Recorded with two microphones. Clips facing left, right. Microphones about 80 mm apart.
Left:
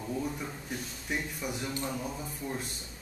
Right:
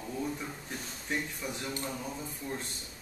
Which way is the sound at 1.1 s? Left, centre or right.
Centre.